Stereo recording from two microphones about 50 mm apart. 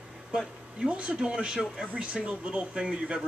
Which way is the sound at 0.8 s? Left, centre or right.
Right.